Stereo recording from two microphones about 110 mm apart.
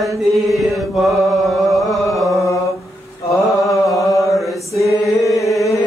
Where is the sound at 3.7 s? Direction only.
30° left (ahead or behind).